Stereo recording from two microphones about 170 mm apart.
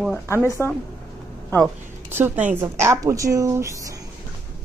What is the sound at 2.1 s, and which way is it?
Speech, 10° right (ahead or behind).